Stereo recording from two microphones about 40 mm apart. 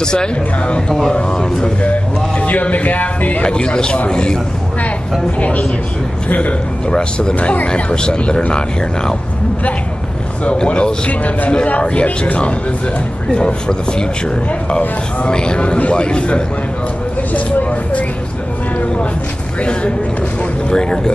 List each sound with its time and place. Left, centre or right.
0.0 s a man's voice: centre
2.4 s speech: left
3.4 s speech: left
5.4 s speech: left
6.9 s speech: left
10.4 s speech: left
15.2 s speech: left
17.3 s vehicle: left
19.6 s speech: left
20.7 s speech: centre